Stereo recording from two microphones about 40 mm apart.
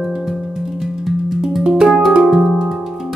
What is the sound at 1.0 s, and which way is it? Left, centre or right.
Music, centre.